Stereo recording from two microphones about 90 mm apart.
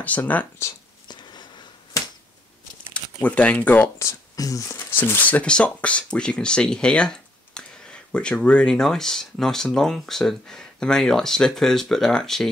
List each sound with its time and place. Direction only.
0.0 s speech: 20° left (ahead or behind)
1.0 s a sound: 55° left (ahead or behind)
2.9 s speech: 15° left (ahead or behind)
4.0 s speech: 40° left (ahead or behind)
4.7 s speech: 25° left (ahead or behind)
5.4 s speech: 10° left (ahead or behind)